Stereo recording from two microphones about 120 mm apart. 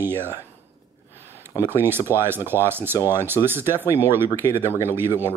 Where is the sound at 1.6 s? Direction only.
20° right (ahead or behind).